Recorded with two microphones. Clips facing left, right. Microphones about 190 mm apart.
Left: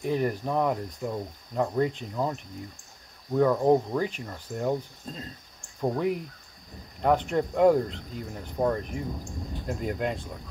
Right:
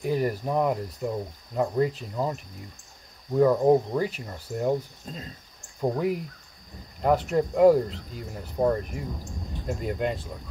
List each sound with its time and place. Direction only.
0.0 s speech: 5° right (ahead or behind)